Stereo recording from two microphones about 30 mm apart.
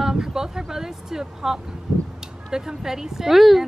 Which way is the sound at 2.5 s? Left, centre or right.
Centre.